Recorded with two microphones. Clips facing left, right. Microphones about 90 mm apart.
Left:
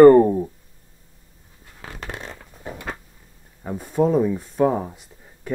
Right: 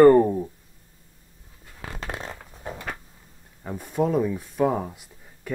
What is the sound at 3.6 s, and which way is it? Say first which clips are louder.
Speech: left 4 dB; 10° left (ahead or behind).